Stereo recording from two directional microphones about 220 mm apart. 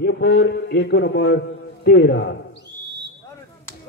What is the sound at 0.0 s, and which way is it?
A man's voice, 50° left (ahead or behind).